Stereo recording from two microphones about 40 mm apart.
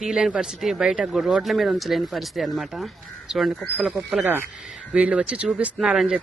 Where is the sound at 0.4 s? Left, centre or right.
Centre.